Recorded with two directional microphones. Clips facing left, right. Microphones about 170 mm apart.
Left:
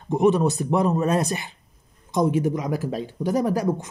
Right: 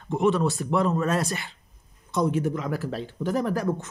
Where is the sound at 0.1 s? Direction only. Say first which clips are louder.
Left 4 dB; 15° left (ahead or behind).